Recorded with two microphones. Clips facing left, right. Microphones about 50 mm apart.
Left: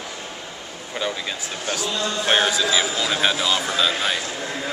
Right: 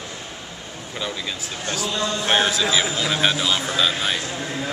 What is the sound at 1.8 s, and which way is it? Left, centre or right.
A man's voice, centre.